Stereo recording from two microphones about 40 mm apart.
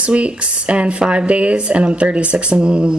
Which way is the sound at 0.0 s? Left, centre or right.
Right.